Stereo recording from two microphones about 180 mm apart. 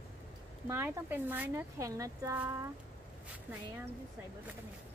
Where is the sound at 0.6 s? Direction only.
10° right (ahead or behind).